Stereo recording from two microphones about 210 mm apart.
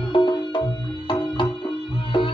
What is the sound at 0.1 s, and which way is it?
Music, 20° left (ahead or behind).